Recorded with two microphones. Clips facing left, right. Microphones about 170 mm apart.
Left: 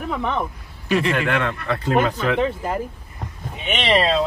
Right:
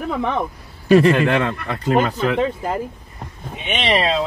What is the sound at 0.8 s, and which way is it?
Speech, 40° right (ahead or behind).